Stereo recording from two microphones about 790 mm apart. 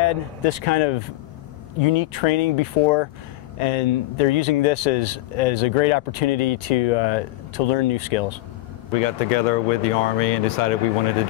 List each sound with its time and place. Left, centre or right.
0.0 s speech: left
8.9 s speech: left